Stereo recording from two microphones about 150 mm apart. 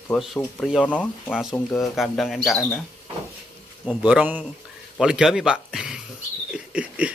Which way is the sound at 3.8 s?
10° right (ahead or behind).